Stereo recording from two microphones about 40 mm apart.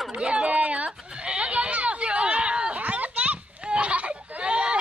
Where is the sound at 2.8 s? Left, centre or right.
Right.